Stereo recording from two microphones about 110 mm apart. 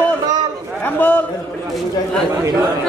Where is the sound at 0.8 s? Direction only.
15° left (ahead or behind).